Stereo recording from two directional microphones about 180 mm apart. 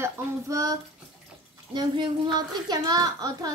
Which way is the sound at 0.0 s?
20° right (ahead or behind).